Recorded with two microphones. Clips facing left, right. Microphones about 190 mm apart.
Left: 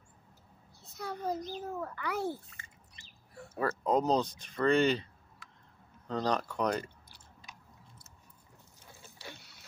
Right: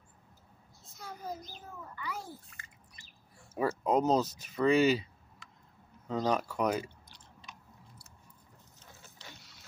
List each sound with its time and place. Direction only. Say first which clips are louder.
0.8 s a child's voice: left 6 dB; 65° left (ahead or behind)
3.5 s speech: right 1 dB; 10° right (ahead or behind)
9.2 s vehicle: left 6 dB; 10° left (ahead or behind)